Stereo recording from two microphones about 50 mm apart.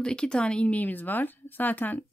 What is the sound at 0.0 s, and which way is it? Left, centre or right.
Speech, centre.